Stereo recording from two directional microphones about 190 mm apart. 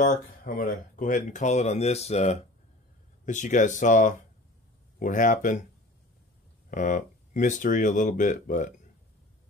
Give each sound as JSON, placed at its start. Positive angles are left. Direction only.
{"t": 0.6, "sound": "speech", "side_deg": 45}
{"t": 6.7, "sound": "speech", "side_deg": 40}